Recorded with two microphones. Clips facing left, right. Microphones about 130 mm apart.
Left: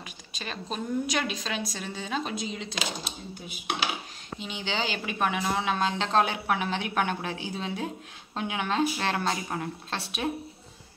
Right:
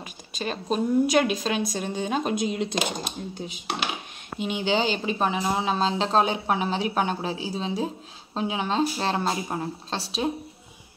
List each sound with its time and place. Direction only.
0.3 s speech: 45° right (ahead or behind)
4.3 s speech: 50° right (ahead or behind)
4.9 s speech: 25° right (ahead or behind)